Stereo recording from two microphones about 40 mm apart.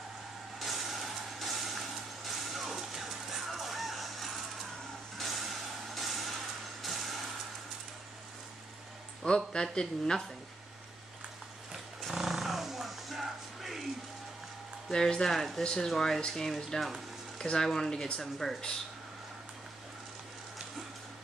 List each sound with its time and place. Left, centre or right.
0.6 s vehicle: centre
9.2 s speech: centre
12.1 s music: centre
14.9 s speech: centre
15.6 s speech: centre